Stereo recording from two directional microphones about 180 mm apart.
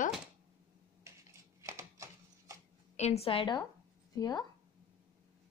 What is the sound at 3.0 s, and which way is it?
A woman's voice, 35° left (ahead or behind).